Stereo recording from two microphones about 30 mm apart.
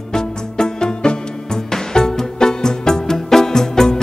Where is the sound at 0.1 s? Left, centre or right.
Left.